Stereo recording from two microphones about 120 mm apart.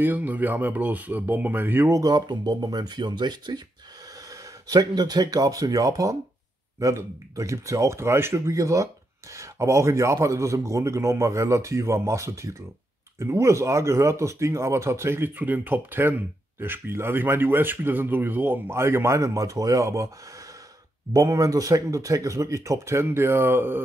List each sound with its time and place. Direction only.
0.0 s speech: 15° right (ahead or behind)